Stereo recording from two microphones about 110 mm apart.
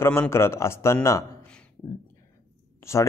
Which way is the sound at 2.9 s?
25° left (ahead or behind).